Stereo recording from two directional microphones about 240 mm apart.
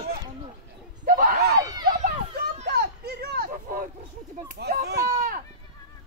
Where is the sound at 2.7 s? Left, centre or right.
Right.